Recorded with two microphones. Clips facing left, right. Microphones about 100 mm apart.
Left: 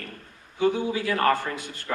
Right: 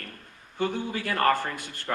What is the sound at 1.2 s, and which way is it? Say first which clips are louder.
Speech: even; 50° left (ahead or behind).